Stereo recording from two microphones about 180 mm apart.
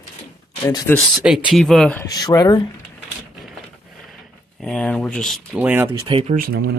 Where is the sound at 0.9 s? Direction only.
10° left (ahead or behind).